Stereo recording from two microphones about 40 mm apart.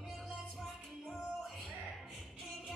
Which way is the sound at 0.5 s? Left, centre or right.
Centre.